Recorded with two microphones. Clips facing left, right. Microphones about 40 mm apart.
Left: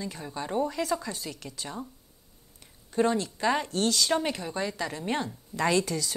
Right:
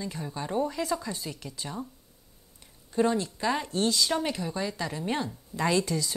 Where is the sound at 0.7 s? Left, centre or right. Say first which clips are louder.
Left 1 dB; left.